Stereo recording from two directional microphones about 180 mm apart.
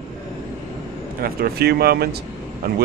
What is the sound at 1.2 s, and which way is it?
Speech, 55° right (ahead or behind).